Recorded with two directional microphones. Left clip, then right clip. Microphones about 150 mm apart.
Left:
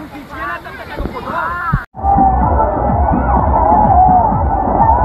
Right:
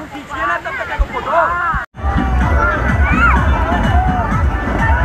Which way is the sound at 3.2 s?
90° right.